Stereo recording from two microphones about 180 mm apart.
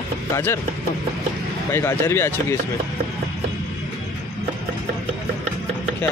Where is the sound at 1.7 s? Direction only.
15° left (ahead or behind).